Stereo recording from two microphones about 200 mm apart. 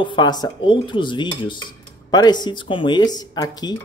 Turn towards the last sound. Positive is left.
turn(degrees=20)  # may be behind; listen again after turning